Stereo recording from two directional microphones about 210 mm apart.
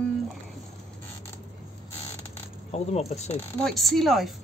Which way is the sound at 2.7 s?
30° left (ahead or behind).